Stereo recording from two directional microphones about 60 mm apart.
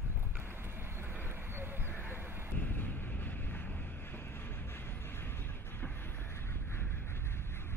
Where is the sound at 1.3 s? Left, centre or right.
Right.